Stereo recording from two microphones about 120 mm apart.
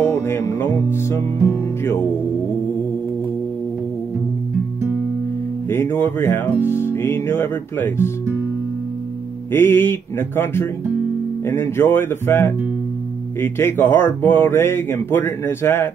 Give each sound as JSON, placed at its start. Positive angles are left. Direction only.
{"t": 0.0, "sound": "music", "side_deg": 15}
{"t": 5.7, "sound": "speech", "side_deg": 20}
{"t": 9.5, "sound": "speech", "side_deg": 20}